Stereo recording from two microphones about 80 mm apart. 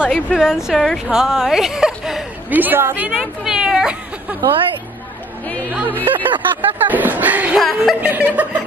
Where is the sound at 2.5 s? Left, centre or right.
Right.